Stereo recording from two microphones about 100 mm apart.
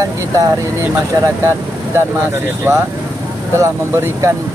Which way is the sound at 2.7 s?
20° right (ahead or behind).